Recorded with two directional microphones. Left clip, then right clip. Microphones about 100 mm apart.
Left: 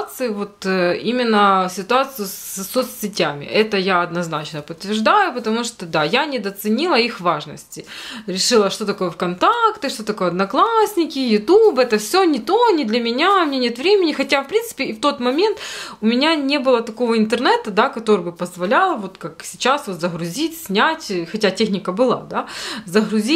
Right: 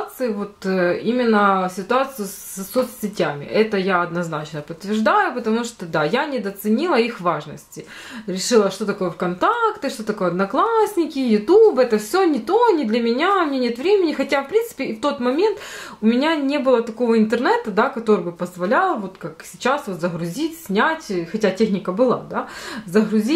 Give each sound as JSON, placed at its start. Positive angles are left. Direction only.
{"t": 0.2, "sound": "speech", "side_deg": 20}